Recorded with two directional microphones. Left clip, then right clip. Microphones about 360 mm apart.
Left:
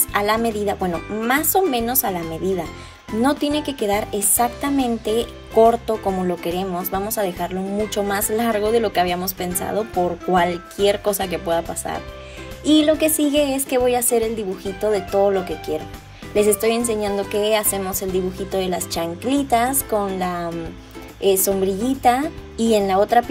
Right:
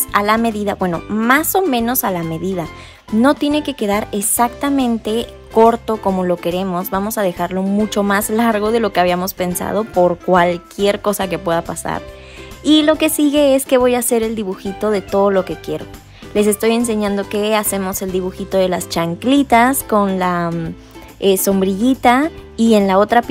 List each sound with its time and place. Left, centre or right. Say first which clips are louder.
0.1 s speech: right 5 dB; centre